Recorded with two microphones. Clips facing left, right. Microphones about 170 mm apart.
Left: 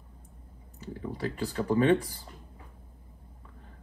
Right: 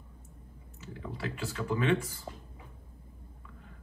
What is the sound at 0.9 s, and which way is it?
Speech, 35° left (ahead or behind).